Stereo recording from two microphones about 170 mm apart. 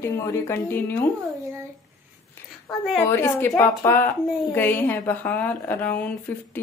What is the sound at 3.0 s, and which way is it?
Speech, 15° left (ahead or behind).